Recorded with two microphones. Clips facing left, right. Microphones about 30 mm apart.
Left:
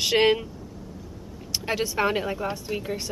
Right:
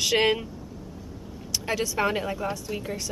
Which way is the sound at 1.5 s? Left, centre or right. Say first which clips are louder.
Left 1 dB; centre.